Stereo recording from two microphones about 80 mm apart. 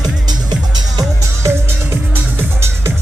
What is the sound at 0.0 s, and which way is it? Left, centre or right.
Music, right.